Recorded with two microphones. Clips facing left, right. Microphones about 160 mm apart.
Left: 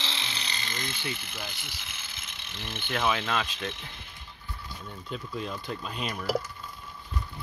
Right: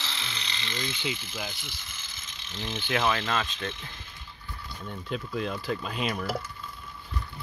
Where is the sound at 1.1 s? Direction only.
60° left (ahead or behind).